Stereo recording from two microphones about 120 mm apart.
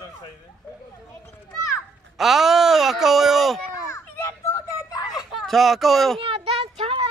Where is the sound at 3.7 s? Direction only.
25° left (ahead or behind).